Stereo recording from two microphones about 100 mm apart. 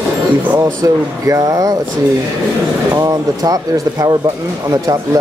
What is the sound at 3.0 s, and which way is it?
Speech, 35° right (ahead or behind).